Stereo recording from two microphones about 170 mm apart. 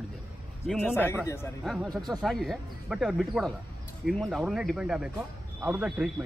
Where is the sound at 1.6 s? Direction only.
Centre (ahead or behind).